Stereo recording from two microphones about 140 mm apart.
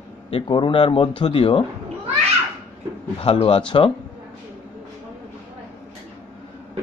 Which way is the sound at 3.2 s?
40° left (ahead or behind).